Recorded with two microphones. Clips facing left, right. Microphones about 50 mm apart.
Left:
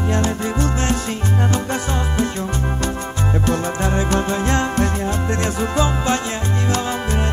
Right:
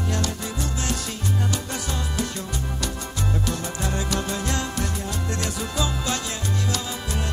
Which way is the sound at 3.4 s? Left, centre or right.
Left.